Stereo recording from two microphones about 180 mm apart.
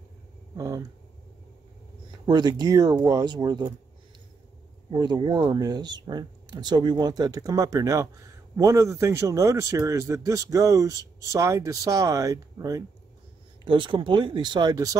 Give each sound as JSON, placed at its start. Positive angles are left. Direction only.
{"t": 0.6, "sound": "speech", "side_deg": -15}
{"t": 2.0, "sound": "speech", "side_deg": -25}
{"t": 4.9, "sound": "speech", "side_deg": -25}